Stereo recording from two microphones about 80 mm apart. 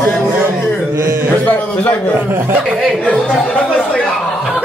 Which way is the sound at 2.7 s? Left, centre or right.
Centre.